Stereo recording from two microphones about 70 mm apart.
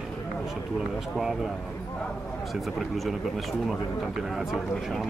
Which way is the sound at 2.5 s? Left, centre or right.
Centre.